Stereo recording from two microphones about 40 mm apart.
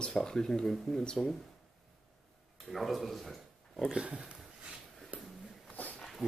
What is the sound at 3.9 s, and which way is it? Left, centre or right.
Speech, right.